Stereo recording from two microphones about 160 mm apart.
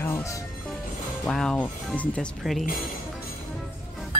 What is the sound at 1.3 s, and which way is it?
Speech, 5° left (ahead or behind).